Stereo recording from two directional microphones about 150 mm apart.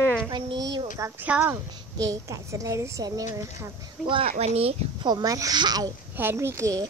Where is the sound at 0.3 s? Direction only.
30° right (ahead or behind).